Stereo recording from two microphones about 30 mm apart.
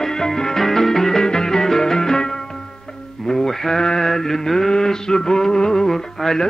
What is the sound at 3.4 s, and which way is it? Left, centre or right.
Mantra, centre.